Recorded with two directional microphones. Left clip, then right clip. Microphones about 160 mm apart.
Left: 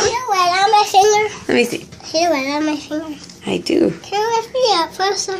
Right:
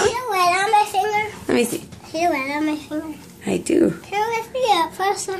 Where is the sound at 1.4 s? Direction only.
5° right (ahead or behind).